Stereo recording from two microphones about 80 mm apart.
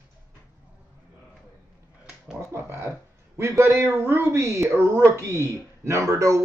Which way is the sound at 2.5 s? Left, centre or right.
Right.